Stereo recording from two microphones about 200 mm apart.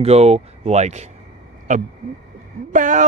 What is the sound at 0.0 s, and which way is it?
Speech, 30° right (ahead or behind).